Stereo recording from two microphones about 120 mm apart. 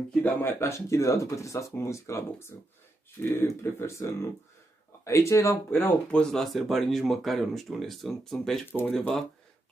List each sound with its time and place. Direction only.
0.1 s speech: 15° left (ahead or behind)
6.2 s speech: centre (ahead or behind)